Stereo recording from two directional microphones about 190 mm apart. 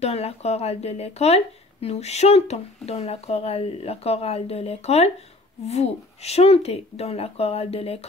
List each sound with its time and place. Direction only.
0.0 s speech: 30° left (ahead or behind)